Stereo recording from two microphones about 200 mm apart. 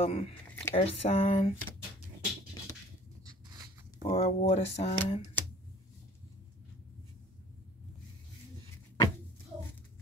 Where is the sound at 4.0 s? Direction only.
35° left (ahead or behind).